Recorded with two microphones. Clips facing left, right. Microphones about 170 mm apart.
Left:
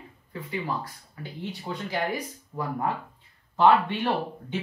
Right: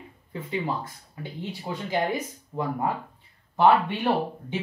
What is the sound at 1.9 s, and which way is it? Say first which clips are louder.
Speech: right 3 dB; 25° right (ahead or behind).